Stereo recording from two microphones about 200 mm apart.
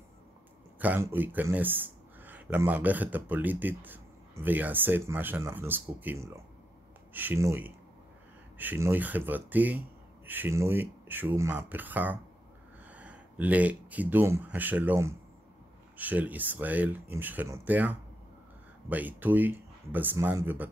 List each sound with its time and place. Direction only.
0.7 s speech: 10° right (ahead or behind)